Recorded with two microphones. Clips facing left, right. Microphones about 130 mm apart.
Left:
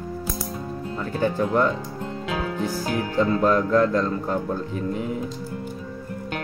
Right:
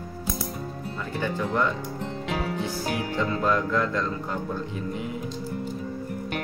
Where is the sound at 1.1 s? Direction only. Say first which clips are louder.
Left 5 dB; 40° left (ahead or behind).